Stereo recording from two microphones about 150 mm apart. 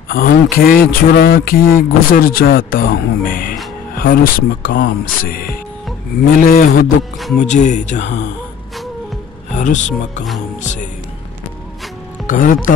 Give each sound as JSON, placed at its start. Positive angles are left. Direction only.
{"t": 0.1, "sound": "mantra", "side_deg": 80}
{"t": 7.4, "sound": "speech", "side_deg": 50}
{"t": 9.6, "sound": "speech", "side_deg": 55}
{"t": 12.3, "sound": "speech", "side_deg": 65}